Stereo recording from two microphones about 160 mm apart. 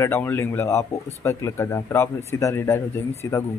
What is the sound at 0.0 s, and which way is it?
Speech, 15° left (ahead or behind).